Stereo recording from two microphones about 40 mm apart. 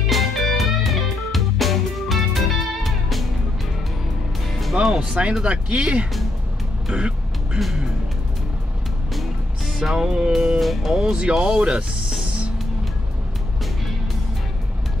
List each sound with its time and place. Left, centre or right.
0.0 s music: centre
4.8 s speech: centre
7.5 s speech: centre
9.9 s speech: centre
10.6 s speech: centre
10.9 s speech: centre